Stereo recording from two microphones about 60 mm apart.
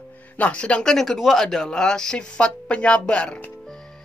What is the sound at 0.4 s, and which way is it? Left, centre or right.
Speech, left.